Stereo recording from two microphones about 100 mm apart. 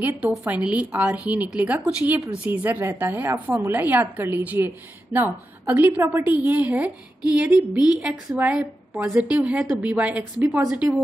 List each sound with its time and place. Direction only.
0.5 s a woman's voice: 15° right (ahead or behind)
2.2 s a woman's voice: 20° right (ahead or behind)